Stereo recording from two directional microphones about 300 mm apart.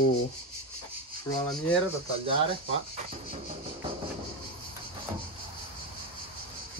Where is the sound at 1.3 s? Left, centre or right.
Centre.